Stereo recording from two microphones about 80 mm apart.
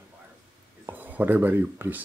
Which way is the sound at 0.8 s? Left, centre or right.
Right.